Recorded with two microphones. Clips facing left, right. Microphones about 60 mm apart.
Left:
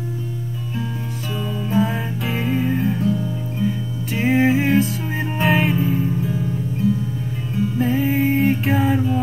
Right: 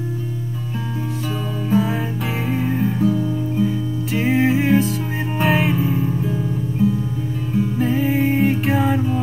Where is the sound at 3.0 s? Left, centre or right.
Centre.